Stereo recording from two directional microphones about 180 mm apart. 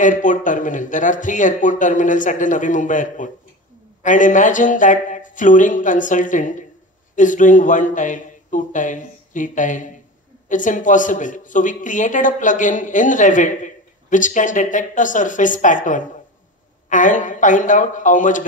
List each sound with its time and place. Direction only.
0.0 s a man's voice: 45° left (ahead or behind)